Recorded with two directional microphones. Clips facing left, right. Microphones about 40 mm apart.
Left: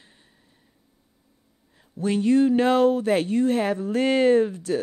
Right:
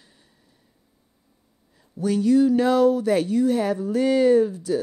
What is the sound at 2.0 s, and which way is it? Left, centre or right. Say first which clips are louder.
Speech: right 1 dB; left.